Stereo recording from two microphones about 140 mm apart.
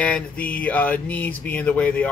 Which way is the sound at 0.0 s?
10° left (ahead or behind).